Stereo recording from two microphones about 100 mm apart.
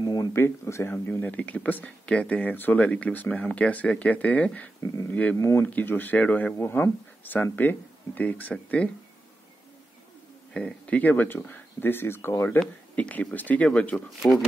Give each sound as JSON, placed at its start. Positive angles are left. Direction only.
{"t": 0.0, "sound": "a sound", "side_deg": 40}
{"t": 0.3, "sound": "speech", "side_deg": 25}
{"t": 4.8, "sound": "speech", "side_deg": 30}
{"t": 5.1, "sound": "speech", "side_deg": 15}
{"t": 10.5, "sound": "speech", "side_deg": 10}
{"t": 12.5, "sound": "speech", "side_deg": 10}